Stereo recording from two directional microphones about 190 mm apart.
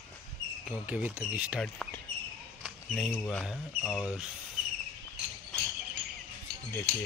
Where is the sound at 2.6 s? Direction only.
Centre (ahead or behind).